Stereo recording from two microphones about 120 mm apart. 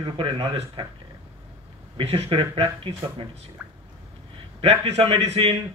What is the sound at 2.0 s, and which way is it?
Speech, 55° right (ahead or behind).